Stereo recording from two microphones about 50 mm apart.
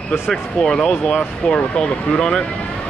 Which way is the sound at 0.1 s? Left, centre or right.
Centre.